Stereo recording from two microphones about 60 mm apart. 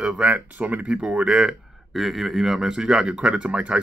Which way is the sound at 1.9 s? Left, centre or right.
Centre.